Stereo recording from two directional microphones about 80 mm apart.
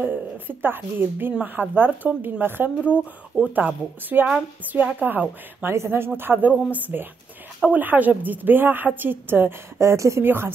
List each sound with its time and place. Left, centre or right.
0.0 s a woman's voice: right
2.8 s speech: left
3.5 s a woman's voice: right